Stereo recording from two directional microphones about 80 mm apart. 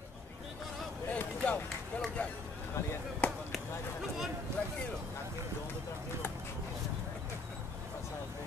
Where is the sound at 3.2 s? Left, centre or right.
Centre.